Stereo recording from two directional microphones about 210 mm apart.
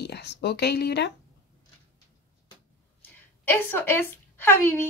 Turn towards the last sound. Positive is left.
turn(degrees=10)  # may be behind; listen again after turning